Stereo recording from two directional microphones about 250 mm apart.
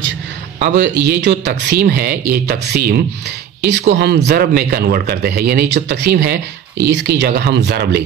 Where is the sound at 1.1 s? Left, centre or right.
Right.